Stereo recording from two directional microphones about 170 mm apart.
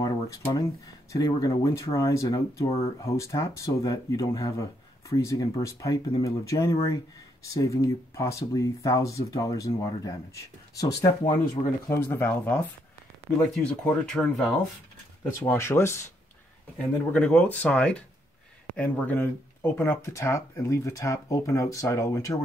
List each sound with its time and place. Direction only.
0.0 s speech: 20° left (ahead or behind)
11.9 s speech: 10° left (ahead or behind)
15.4 s speech: 15° left (ahead or behind)
17.1 s speech: 10° left (ahead or behind)